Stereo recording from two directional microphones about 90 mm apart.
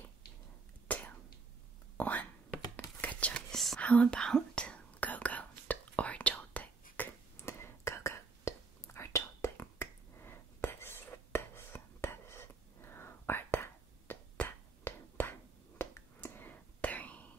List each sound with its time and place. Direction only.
0.9 s whispering: 20° left (ahead or behind)
3.5 s whispering: 5° left (ahead or behind)
3.8 s speech: 15° left (ahead or behind)
4.2 s whispering: 10° left (ahead or behind); by 14.1 s 25° left (ahead or behind)
14.3 s a sound: 20° left (ahead or behind)
15.8 s whispering: 25° left (ahead or behind)